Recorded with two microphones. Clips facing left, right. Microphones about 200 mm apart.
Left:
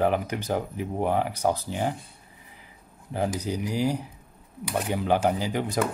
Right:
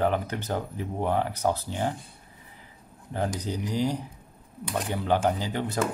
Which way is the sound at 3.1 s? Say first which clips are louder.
Left 2 dB; 10° left (ahead or behind).